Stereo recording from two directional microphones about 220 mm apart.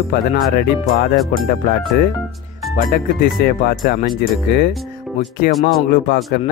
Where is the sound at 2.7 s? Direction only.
45° left (ahead or behind).